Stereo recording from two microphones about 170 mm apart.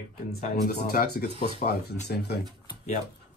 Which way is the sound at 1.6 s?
75° left (ahead or behind).